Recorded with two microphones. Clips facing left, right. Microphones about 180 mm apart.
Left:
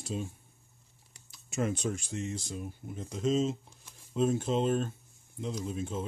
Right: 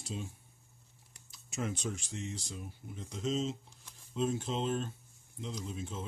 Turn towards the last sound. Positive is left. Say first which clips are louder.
# left 6 dB
turn(degrees=50)  # may be behind; listen again after turning